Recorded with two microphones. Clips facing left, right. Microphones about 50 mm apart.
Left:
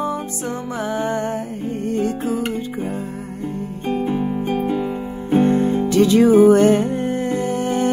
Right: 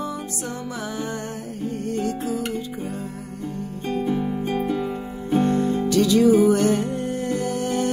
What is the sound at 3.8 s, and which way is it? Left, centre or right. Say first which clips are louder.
Music: left 3 dB; left.